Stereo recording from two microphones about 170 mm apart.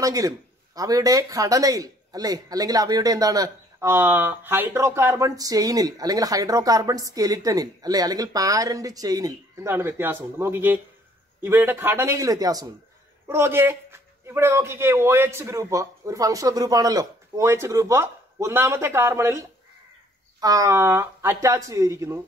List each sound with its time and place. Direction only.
0.0 s a man's voice: 20° right (ahead or behind)